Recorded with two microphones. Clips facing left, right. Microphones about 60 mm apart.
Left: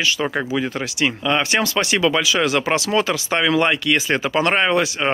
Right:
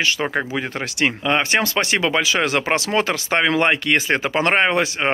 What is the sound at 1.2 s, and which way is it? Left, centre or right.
Speech, right.